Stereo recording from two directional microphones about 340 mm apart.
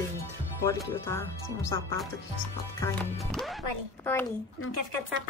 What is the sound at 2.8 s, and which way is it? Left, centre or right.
Speech, centre.